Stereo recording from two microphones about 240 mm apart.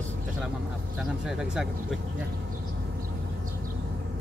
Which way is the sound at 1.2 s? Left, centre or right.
Centre.